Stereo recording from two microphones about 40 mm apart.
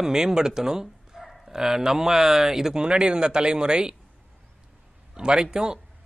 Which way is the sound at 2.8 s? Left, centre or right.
Right.